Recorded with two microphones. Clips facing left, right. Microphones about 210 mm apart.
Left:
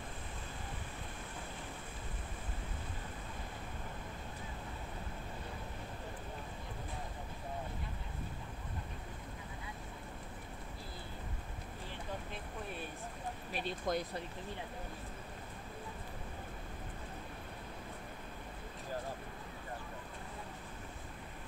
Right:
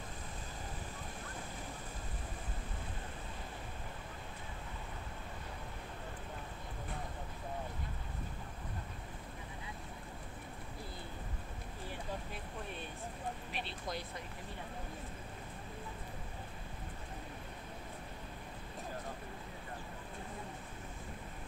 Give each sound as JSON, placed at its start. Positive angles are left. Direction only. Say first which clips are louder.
{"t": 13.5, "sound": "speech", "louder": "left 5 dB", "side_deg": 40}